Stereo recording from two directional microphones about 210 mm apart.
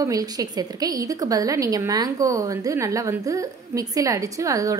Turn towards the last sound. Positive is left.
turn(degrees=-15)  # may be behind; listen again after turning